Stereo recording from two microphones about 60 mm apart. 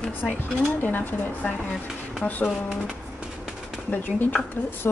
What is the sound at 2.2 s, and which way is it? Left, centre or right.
Speech, left.